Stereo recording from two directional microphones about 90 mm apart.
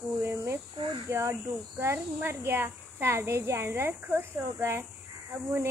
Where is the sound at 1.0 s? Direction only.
35° right (ahead or behind).